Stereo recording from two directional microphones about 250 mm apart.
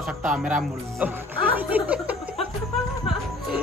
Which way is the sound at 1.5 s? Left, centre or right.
Centre.